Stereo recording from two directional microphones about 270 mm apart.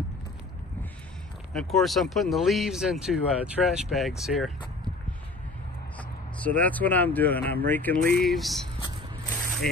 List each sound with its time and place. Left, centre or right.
1.5 s speech: centre
5.9 s speech: centre
9.3 s spray: centre